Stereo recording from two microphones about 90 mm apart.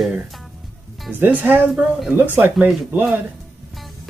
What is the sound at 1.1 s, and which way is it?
Speech, 20° right (ahead or behind).